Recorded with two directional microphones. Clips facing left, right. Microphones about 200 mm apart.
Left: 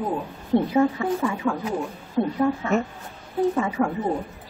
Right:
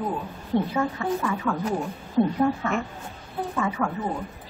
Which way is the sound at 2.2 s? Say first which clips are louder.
Right 2 dB; centre (ahead or behind).